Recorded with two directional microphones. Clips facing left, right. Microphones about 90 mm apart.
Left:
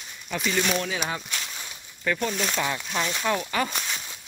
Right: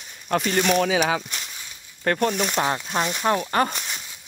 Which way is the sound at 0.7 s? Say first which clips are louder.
Right 8 dB; 80° right.